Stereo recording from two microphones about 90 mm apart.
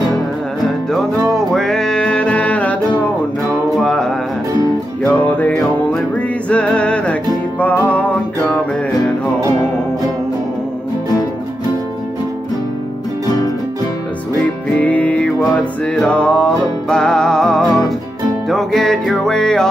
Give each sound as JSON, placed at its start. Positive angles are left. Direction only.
{"t": 1.3, "sound": "music", "side_deg": 5}
{"t": 3.8, "sound": "music", "side_deg": 5}
{"t": 5.0, "sound": "music", "side_deg": 20}
{"t": 14.4, "sound": "music", "side_deg": 15}